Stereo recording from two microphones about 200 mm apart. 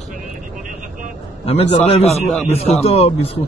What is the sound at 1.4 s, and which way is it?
A man's voice, 30° left (ahead or behind).